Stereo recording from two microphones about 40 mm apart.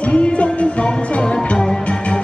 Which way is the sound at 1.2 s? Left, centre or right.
Left.